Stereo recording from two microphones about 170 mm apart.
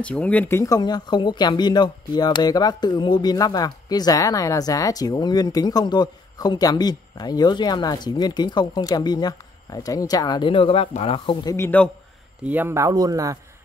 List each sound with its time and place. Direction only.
0.0 s speech: 5° left (ahead or behind); by 11.5 s 30° left (ahead or behind)
11.5 s a man's voice: 10° left (ahead or behind)
12.4 s speech: 10° right (ahead or behind)